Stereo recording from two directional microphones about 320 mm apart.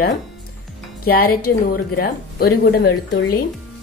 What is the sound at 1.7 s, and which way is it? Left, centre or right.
Speech, left.